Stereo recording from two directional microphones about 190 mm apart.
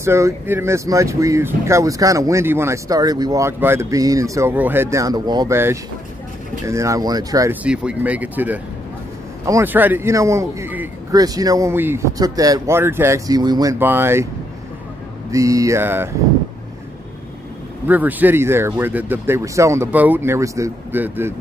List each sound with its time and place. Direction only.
0.0 s speech: 15° right (ahead or behind)
7.6 s speech: 5° right (ahead or behind)
15.3 s speech: 15° right (ahead or behind)
17.8 s speech: 10° right (ahead or behind)